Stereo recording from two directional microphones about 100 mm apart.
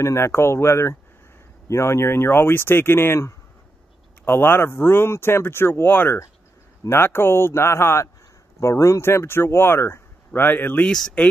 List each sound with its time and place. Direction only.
0.0 s speech: 25° left (ahead or behind)
10.9 s speech: 5° left (ahead or behind)